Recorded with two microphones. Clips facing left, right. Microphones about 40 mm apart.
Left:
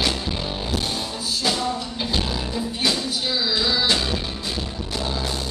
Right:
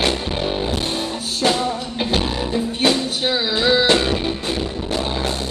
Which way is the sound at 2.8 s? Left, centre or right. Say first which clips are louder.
Right 5 dB; right.